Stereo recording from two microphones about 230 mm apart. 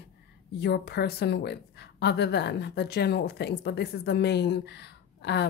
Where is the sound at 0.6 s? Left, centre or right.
Left.